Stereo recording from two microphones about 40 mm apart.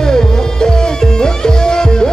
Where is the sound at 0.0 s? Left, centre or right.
Centre.